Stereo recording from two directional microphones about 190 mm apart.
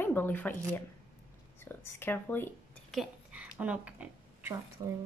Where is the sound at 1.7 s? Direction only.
10° left (ahead or behind).